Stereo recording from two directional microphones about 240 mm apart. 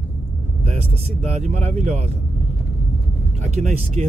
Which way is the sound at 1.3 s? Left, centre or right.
Right.